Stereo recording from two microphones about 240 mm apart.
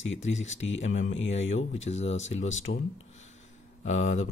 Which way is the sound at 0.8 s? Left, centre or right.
Left.